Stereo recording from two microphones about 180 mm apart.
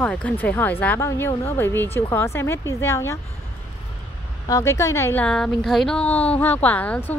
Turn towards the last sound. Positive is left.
turn(degrees=10)  # may be behind; listen again after turning